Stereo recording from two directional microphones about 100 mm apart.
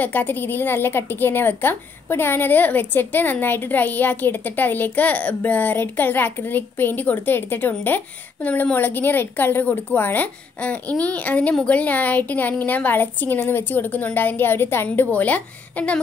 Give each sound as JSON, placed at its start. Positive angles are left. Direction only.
{"t": 0.0, "sound": "a woman's voice", "side_deg": 20}